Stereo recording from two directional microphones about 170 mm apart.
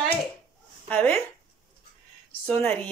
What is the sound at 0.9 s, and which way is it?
Speech, 10° left (ahead or behind).